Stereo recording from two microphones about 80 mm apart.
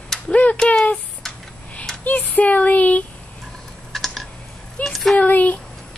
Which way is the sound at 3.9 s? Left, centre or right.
Centre.